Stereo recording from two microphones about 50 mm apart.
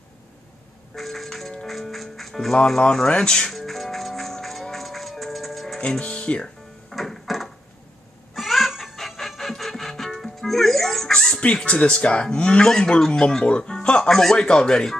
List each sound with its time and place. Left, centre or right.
0.9 s music: centre
2.5 s speech: centre
3.4 s music: centre
5.8 s speech: left
6.9 s music: centre
11.6 s speech: left